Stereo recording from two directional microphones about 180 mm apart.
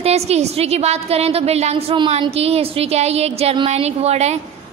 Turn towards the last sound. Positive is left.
turn(degrees=-35)  # may be behind; listen again after turning